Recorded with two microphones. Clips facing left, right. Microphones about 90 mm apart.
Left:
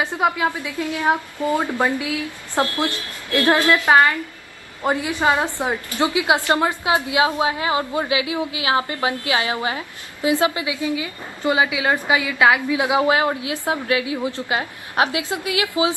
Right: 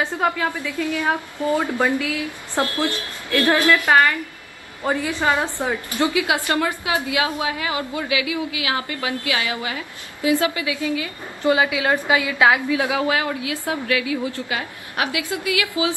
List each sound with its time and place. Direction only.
0.0 s a woman's voice: 15° left (ahead or behind)